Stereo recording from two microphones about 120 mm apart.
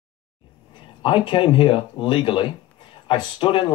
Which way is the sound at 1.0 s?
45° left (ahead or behind).